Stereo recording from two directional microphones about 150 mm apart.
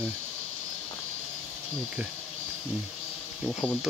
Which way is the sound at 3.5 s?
5° left (ahead or behind).